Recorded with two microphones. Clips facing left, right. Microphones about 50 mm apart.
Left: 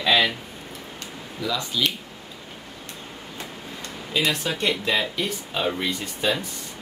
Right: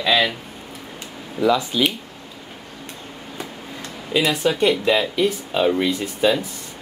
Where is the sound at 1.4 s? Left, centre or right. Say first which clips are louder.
Right 8 dB; right.